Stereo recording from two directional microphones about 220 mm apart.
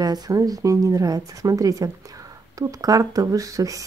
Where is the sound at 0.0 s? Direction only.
15° right (ahead or behind).